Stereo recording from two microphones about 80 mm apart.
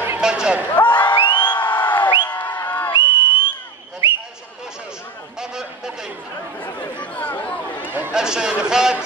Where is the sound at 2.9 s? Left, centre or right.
Left.